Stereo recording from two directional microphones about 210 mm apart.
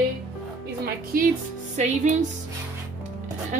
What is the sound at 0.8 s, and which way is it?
A woman's voice, 45° right (ahead or behind).